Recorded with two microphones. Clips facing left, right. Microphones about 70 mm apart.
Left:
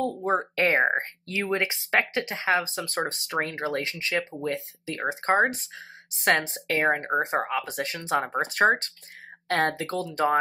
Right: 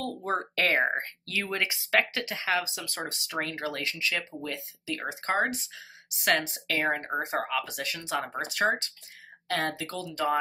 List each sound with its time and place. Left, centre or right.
0.0 s speech: centre; by 10.4 s left